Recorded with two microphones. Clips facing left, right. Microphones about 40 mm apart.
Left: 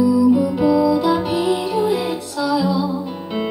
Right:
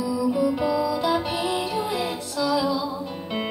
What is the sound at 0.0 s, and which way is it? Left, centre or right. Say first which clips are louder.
Music: left 9 dB; left.